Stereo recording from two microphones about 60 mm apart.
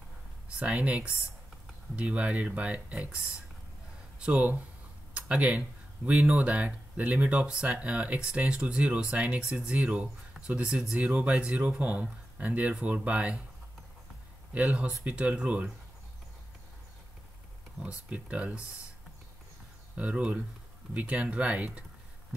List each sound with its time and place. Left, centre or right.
0.5 s speech: centre
4.2 s speech: right
5.1 s a sound: right
6.2 s speech: right
14.5 s speech: right
17.7 s speech: centre
20.0 s speech: right